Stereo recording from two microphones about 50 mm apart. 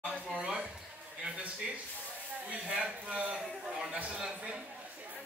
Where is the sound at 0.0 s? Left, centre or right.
Right.